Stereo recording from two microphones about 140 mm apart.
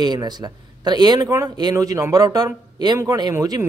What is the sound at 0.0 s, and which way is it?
A man's voice, 30° right (ahead or behind).